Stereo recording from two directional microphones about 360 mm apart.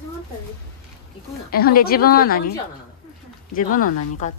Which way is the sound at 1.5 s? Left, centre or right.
Left.